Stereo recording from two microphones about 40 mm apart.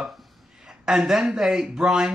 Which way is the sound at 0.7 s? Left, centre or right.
Centre.